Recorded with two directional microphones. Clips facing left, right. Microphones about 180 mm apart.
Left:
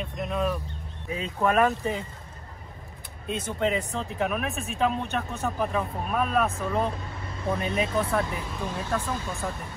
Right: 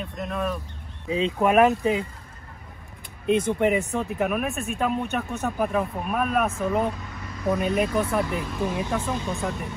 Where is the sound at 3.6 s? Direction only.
15° right (ahead or behind).